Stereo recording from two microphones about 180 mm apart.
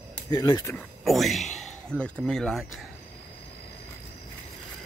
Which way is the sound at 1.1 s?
Centre (ahead or behind).